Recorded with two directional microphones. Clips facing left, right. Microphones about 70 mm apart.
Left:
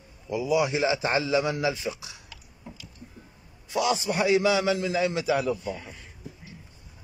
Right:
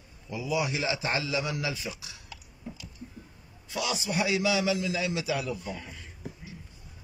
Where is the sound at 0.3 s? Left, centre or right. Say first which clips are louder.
Left 6 dB; left.